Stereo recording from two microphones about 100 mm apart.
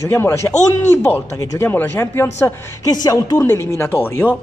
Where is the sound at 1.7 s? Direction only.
20° left (ahead or behind).